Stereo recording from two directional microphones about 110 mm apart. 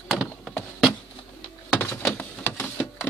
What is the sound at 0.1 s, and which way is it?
Wood, centre (ahead or behind).